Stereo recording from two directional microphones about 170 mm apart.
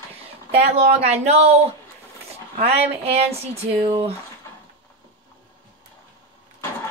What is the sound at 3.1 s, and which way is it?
Speech, 35° right (ahead or behind).